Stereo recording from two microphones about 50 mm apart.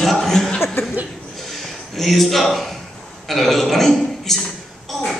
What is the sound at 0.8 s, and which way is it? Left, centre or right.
Speech, left.